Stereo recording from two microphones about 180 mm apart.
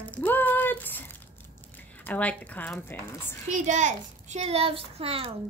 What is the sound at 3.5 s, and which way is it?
Speech, 45° right (ahead or behind).